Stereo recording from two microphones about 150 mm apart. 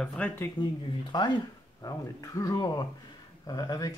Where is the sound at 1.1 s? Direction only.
30° left (ahead or behind).